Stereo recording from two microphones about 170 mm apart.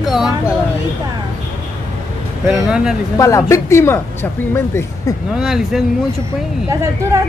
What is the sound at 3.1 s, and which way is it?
A woman's voice, 20° left (ahead or behind).